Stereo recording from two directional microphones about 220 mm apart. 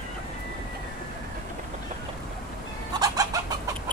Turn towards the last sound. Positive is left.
turn(degrees=-15)  # may be behind; listen again after turning